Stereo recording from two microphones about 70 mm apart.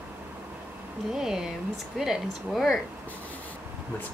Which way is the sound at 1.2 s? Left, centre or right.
Centre.